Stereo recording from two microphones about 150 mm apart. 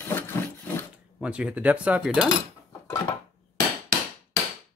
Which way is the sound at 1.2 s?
10° right (ahead or behind).